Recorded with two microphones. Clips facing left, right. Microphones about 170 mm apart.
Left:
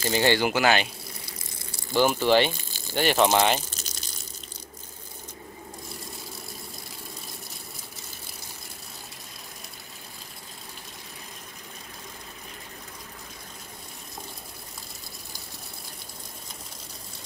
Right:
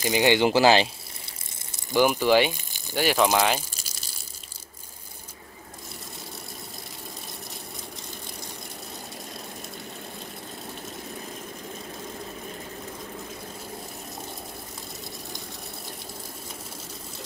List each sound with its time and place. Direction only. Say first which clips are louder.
0.0 s speech: right 2 dB; 15° right (ahead or behind)
0.5 s speech: right 4 dB; 30° right (ahead or behind)
1.7 s speech: right 1 dB; 15° right (ahead or behind)